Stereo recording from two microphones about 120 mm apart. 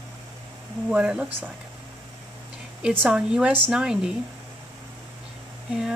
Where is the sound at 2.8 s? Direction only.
10° right (ahead or behind).